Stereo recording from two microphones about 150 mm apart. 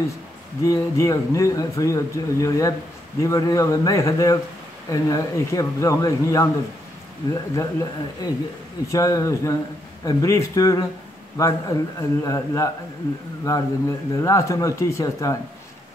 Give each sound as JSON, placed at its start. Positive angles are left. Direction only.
{"t": 0.7, "sound": "speech", "side_deg": 20}
{"t": 7.5, "sound": "speech", "side_deg": 20}